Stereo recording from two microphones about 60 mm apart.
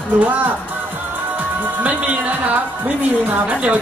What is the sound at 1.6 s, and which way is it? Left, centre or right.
Speech, right.